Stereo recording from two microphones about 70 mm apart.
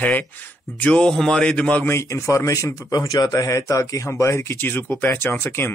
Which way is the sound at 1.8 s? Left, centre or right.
Left.